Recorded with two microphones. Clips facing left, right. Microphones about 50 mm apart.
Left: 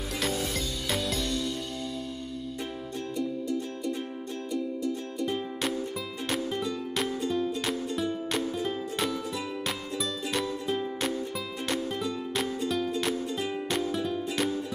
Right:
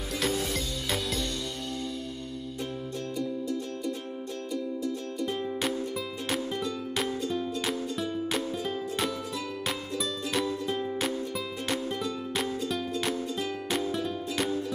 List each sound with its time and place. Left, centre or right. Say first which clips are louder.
0.2 s music: right 1 dB; centre
3.2 s music: left 2 dB; centre
5.2 s music: even; centre
13.3 s music: left 1 dB; centre
13.7 s music: even; centre